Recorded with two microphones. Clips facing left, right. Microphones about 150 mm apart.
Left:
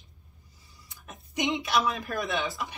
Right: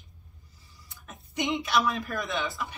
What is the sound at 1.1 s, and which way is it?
A woman's voice, 15° left (ahead or behind).